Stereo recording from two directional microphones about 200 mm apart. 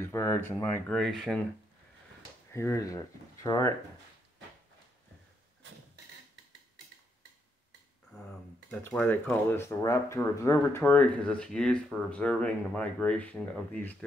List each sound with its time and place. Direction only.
0.0 s speech: 15° left (ahead or behind)
2.5 s speech: 15° left (ahead or behind)
5.6 s a sound: 65° right (ahead or behind)
8.6 s speech: 5° left (ahead or behind)